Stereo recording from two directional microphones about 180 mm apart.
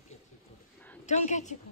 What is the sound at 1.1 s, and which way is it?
Speech, 40° left (ahead or behind).